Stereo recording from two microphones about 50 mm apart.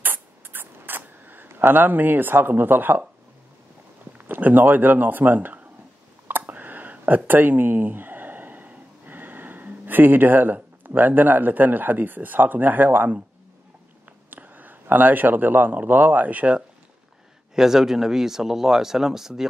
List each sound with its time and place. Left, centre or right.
0.0 s a sound: right
1.5 s speech: right
4.2 s speech: right
6.4 s a sound: right
14.3 s a man's voice: right
17.6 s speech: centre